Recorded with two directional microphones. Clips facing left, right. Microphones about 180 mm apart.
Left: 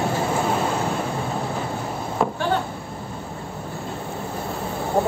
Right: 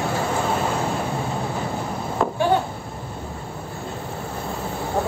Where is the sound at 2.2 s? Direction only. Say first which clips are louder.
Even; 10° left (ahead or behind).